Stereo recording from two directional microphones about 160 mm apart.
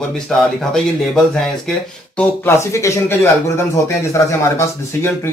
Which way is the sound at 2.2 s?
15° left (ahead or behind).